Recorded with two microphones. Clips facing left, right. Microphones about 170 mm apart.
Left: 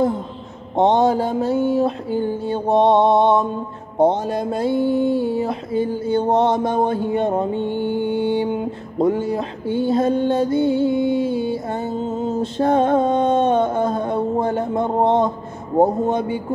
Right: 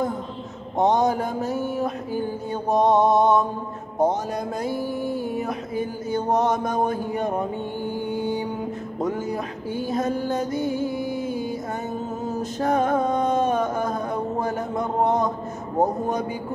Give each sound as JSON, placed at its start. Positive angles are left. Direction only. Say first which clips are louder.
{"t": 0.7, "sound": "mantra", "louder": "left 4 dB", "side_deg": 30}
{"t": 8.1, "sound": "music", "louder": "left 6 dB", "side_deg": 30}
{"t": 15.8, "sound": "mantra", "louder": "left 6 dB", "side_deg": 30}